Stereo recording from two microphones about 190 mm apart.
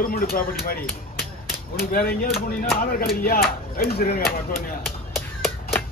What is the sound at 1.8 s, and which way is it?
Speech, 50° left (ahead or behind).